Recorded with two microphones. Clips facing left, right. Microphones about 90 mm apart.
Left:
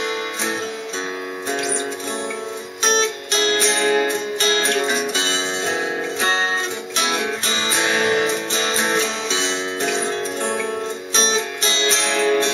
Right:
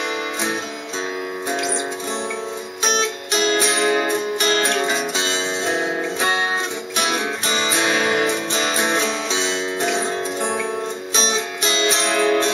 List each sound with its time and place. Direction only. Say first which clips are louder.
3.5 s music: left 2 dB; 10° right (ahead or behind)
7.8 s music: left 2 dB; 10° right (ahead or behind)
11.1 s music: left 1 dB; 10° right (ahead or behind)